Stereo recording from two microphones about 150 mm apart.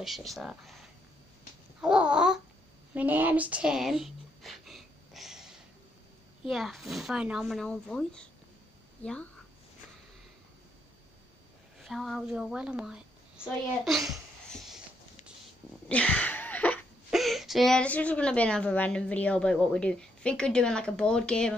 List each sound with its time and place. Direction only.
0.0 s speech: centre (ahead or behind)
1.8 s babbling: 5° right (ahead or behind)
2.9 s a sound: 10° right (ahead or behind)
6.4 s a woman's voice: centre (ahead or behind)
11.8 s speech: centre (ahead or behind)
13.8 s a sound: centre (ahead or behind)
15.9 s sneeze: 10° left (ahead or behind)
17.1 s a woman's voice: centre (ahead or behind)